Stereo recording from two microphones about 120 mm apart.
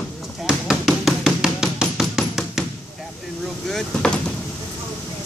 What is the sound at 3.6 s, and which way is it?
Speech, 5° left (ahead or behind).